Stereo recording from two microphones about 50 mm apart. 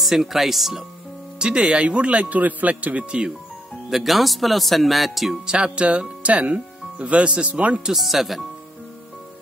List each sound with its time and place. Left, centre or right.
0.0 s speech: centre
1.4 s speech: centre
3.9 s speech: centre
5.5 s speech: right
7.9 s speech: centre